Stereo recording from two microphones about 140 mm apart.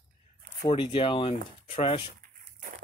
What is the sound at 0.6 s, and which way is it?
Speech, 35° left (ahead or behind).